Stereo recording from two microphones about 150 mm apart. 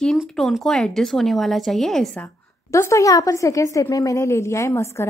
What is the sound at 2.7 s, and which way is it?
A woman's voice, 20° left (ahead or behind).